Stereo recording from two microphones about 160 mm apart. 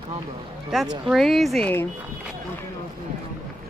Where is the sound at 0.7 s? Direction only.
Centre (ahead or behind).